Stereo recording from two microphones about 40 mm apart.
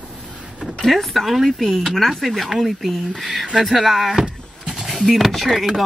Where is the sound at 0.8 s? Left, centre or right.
Centre.